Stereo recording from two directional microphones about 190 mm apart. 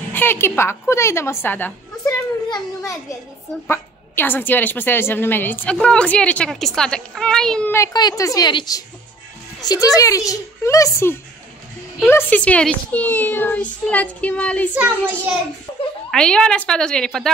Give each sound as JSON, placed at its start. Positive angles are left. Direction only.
{"t": 0.1, "sound": "a woman's voice", "side_deg": 10}
{"t": 16.1, "sound": "a woman's voice", "side_deg": 5}